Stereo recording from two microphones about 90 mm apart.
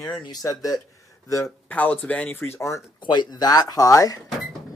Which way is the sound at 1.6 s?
15° left (ahead or behind).